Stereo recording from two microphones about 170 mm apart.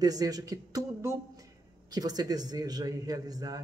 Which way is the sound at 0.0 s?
20° right (ahead or behind).